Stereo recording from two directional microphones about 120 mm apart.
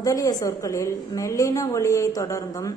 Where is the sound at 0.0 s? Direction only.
30° left (ahead or behind).